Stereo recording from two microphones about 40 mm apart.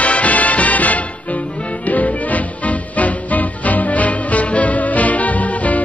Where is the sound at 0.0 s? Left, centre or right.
Left.